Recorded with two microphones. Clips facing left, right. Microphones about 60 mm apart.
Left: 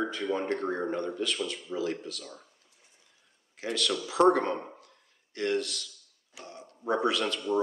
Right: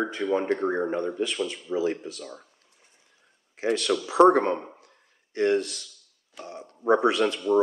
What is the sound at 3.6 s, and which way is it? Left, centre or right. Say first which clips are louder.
Speech: right 6 dB; right.